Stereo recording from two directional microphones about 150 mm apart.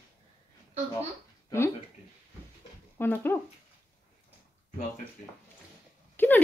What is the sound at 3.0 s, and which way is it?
Speech, 15° left (ahead or behind).